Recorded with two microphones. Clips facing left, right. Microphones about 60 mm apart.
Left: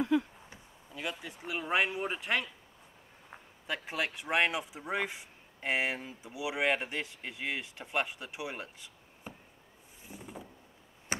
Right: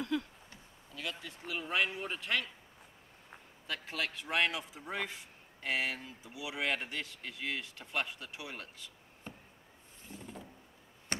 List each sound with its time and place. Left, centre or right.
0.0 s speech: centre
9.3 s chop: centre
10.0 s vehicle: centre
11.1 s a sound: centre